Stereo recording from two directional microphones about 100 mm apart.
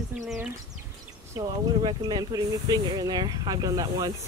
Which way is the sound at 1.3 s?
45° right (ahead or behind).